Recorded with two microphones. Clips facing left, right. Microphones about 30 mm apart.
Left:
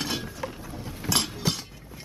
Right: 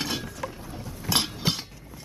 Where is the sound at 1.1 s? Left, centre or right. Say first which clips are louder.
Right 1 dB; centre.